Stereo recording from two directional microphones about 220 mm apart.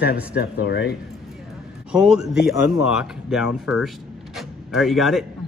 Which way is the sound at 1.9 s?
5° right (ahead or behind).